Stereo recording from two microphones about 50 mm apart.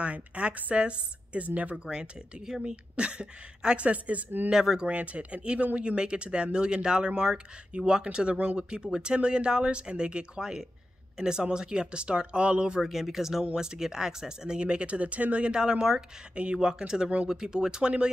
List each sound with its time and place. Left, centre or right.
0.0 s speech: right
1.9 s speech: centre; by 4.3 s right
4.5 s speech: centre
4.8 s speech: right
12.8 s speech: centre